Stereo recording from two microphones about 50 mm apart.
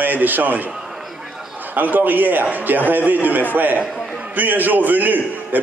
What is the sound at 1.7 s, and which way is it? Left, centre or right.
A man's voice, right.